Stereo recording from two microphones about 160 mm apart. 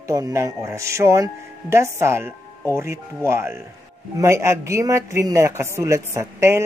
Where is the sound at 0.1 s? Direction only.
20° right (ahead or behind).